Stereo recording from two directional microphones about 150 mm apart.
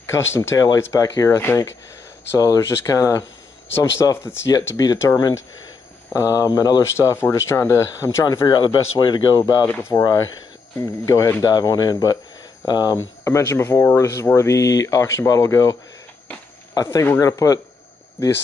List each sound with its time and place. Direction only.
0.1 s speech: 15° left (ahead or behind)
9.7 s speech: 15° left (ahead or behind)